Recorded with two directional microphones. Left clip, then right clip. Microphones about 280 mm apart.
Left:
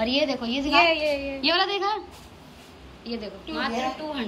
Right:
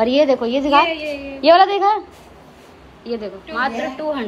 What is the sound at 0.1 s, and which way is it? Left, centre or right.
A woman's voice, centre.